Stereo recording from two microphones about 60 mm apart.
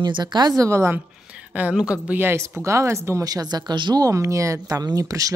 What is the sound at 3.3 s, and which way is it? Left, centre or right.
Speech, right.